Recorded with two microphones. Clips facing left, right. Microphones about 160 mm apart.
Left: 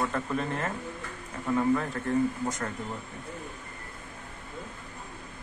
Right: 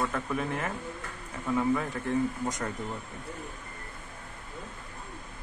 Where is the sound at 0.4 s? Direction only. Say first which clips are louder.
Left 1 dB; 10° right (ahead or behind).